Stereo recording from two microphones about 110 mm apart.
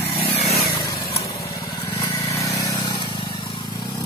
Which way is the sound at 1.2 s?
40° left (ahead or behind).